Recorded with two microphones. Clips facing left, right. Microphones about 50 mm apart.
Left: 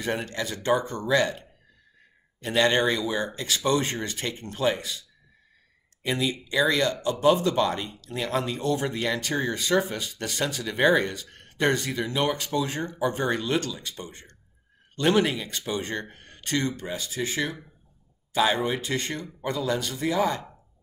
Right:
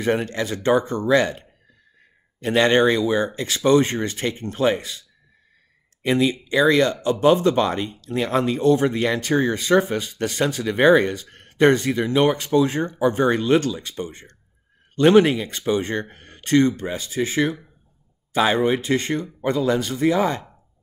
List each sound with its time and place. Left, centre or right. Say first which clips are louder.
0.0 s speech: right 7 dB; right
2.4 s speech: right 6 dB; right
6.0 s speech: right 7 dB; right